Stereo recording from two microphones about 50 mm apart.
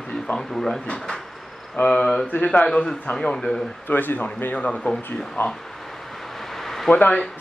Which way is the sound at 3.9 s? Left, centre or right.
Left.